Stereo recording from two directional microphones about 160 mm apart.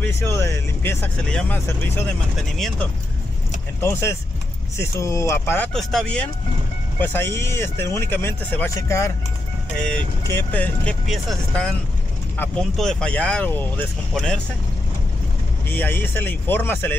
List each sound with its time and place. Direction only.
0.0 s speech: 15° left (ahead or behind)
2.5 s speech: centre (ahead or behind)
3.8 s speech: 15° left (ahead or behind)
5.7 s speech: centre (ahead or behind); by 9.1 s 20° left (ahead or behind)
10.2 s speech: 10° left (ahead or behind)
15.7 s speech: 10° left (ahead or behind)